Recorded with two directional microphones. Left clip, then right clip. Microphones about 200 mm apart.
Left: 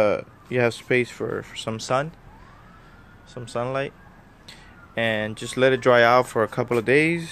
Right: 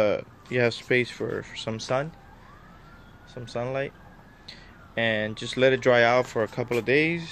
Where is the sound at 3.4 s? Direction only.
15° left (ahead or behind).